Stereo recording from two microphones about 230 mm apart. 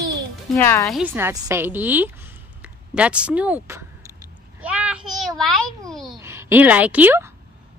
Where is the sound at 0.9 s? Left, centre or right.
Centre.